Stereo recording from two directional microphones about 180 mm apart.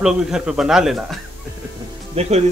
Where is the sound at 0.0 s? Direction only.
5° right (ahead or behind).